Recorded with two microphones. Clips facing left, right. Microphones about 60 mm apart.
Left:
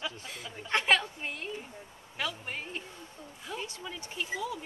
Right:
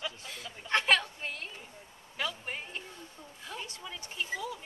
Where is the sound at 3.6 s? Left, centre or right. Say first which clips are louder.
Left 3 dB; left.